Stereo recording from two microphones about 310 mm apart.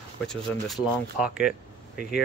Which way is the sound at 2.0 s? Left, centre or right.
Left.